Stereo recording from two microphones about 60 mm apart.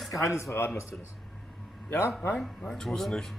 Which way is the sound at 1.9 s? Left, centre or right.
Left.